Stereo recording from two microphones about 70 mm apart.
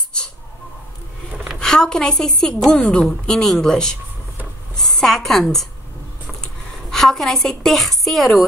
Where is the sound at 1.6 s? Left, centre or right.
Centre.